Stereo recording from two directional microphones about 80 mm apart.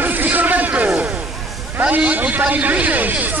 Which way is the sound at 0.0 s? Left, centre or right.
Right.